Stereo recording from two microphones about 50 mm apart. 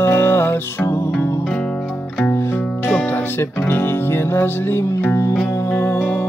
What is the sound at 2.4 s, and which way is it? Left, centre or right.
Music, left.